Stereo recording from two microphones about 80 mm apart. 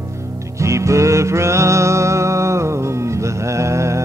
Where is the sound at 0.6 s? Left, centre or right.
Right.